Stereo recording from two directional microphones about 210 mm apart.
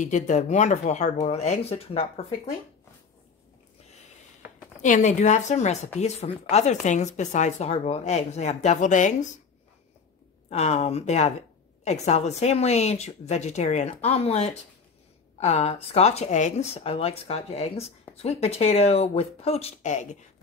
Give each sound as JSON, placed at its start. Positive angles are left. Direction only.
{"t": 0.0, "sound": "speech", "side_deg": 35}
{"t": 4.8, "sound": "speech", "side_deg": 35}
{"t": 10.5, "sound": "speech", "side_deg": 30}